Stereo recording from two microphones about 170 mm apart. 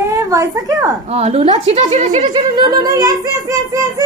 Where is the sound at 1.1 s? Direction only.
35° right (ahead or behind).